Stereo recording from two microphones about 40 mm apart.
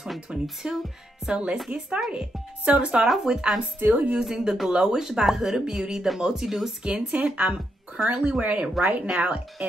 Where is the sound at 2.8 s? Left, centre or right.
Right.